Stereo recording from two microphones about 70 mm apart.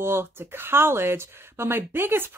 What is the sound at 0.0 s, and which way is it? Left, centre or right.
Speech, right.